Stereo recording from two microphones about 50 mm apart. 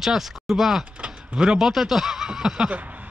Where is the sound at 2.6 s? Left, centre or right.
Right.